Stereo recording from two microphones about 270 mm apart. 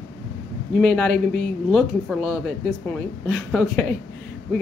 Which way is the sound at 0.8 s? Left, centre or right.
Centre.